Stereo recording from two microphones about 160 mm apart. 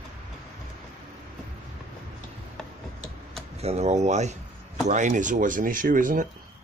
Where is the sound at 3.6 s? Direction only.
45° right (ahead or behind).